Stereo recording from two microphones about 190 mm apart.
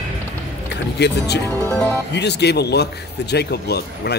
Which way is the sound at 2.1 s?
60° left (ahead or behind).